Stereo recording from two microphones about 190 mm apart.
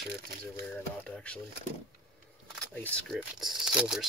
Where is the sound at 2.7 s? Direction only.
5° left (ahead or behind).